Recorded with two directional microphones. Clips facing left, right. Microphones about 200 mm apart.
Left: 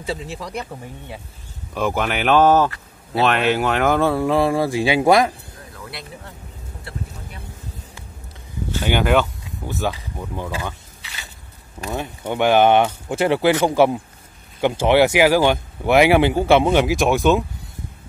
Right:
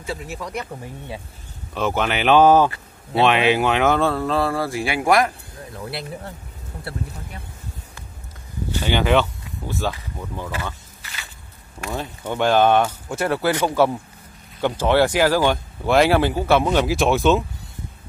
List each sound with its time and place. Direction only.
0.2 s speech: 30° left (ahead or behind)
0.7 s speech: 15° right (ahead or behind)
1.7 s speech: 10° left (ahead or behind)
3.3 s speech: 5° right (ahead or behind)
4.0 s speech: 15° left (ahead or behind)
5.8 s speech: 30° right (ahead or behind)
8.7 s speech: 10° left (ahead or behind)
11.8 s speech: 20° left (ahead or behind)
16.7 s speech: 15° left (ahead or behind)